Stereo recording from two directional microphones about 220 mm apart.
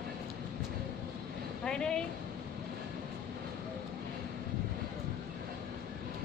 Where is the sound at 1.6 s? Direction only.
5° left (ahead or behind).